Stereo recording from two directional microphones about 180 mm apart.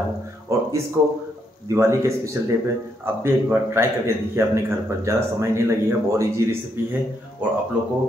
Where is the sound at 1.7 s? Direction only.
15° right (ahead or behind).